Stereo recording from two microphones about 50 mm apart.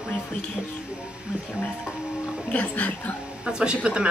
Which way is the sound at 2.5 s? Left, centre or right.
Left.